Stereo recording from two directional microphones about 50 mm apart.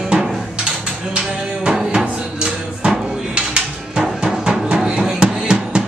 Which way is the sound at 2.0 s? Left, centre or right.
Right.